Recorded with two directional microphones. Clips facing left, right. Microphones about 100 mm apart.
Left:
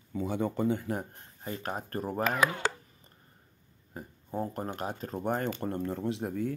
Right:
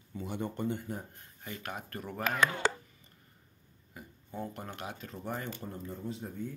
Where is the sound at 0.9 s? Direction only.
90° left.